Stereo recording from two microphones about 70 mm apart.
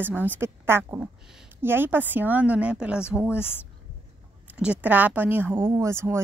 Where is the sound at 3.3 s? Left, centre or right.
Left.